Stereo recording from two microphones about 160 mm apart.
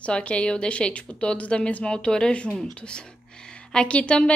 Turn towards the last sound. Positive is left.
turn(degrees=5)  # may be behind; listen again after turning